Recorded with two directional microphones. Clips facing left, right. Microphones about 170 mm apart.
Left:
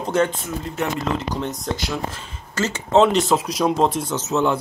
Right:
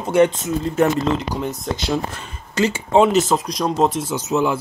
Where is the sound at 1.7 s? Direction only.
30° right (ahead or behind).